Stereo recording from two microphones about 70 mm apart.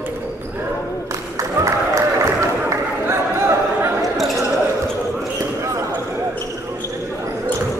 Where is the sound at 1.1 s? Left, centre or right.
Right.